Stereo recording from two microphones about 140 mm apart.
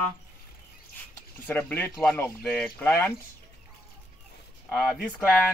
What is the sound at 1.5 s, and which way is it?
Speech, 15° left (ahead or behind).